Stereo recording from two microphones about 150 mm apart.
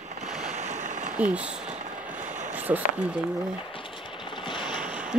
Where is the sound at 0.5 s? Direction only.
50° right (ahead or behind).